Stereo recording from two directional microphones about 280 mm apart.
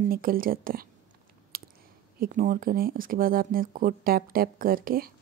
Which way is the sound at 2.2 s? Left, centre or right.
Right.